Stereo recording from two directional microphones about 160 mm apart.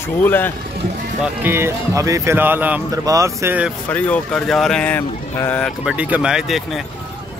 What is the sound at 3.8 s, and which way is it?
Speech, 10° left (ahead or behind).